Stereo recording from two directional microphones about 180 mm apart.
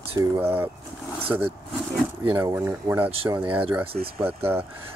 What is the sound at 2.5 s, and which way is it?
Speech, 10° right (ahead or behind).